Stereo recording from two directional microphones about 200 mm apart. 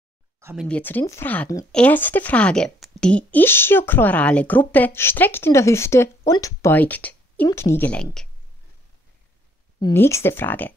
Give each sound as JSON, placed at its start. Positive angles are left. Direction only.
{"t": 0.4, "sound": "a sound", "side_deg": -10}
{"t": 0.7, "sound": "speech", "side_deg": 5}
{"t": 9.8, "sound": "speech", "side_deg": 15}